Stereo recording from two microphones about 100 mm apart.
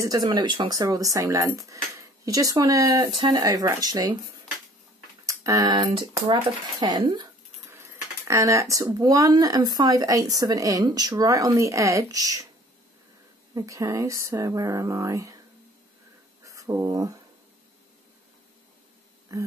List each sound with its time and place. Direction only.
0.0 s speech: 40° right (ahead or behind)
0.7 s speech: 35° right (ahead or behind)
3.4 s speech: 35° right (ahead or behind)
5.2 s tick: 35° right (ahead or behind)
5.8 s speech: 65° right (ahead or behind)
6.8 s speech: 50° right (ahead or behind)
7.7 s speech: 30° right (ahead or behind)
13.6 s speech: 35° right (ahead or behind)
16.4 s speech: 35° right (ahead or behind)
19.3 s speech: 35° right (ahead or behind)